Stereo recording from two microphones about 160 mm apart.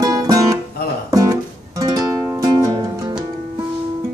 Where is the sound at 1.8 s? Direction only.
25° right (ahead or behind).